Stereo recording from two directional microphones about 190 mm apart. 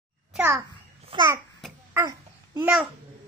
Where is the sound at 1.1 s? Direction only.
20° right (ahead or behind).